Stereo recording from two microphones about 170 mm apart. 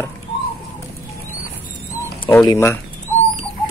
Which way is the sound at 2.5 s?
15° left (ahead or behind).